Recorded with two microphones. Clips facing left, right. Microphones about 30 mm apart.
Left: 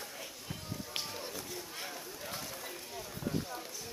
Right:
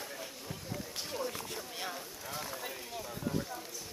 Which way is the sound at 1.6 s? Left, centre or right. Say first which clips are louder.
Right 3 dB; right.